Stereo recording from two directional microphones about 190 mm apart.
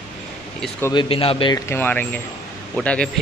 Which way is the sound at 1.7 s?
10° left (ahead or behind).